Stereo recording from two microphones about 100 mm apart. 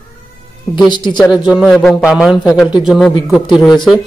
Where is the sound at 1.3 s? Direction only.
5° right (ahead or behind).